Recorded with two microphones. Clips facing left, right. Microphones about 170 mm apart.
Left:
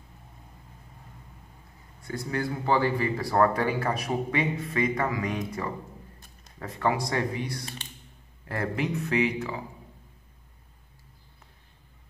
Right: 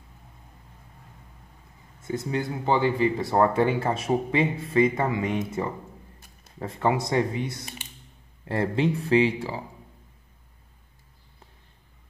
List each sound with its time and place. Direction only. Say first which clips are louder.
2.0 s speech: right 3 dB; 20° right (ahead or behind)